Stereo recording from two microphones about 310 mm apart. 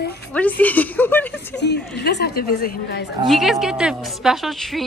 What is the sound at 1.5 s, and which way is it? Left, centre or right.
A woman's voice, left.